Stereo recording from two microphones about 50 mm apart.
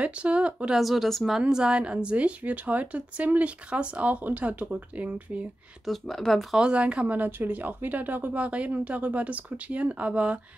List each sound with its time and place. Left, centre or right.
0.0 s a woman's voice: right
0.7 s speech: centre
1.5 s a woman's voice: centre
5.9 s speech: centre
6.5 s a woman's voice: centre
7.2 s speech: right